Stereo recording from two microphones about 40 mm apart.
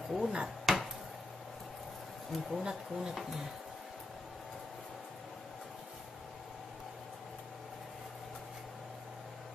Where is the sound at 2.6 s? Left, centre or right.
Centre.